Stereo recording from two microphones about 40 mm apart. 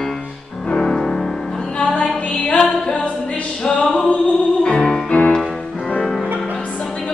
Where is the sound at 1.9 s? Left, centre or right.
Left.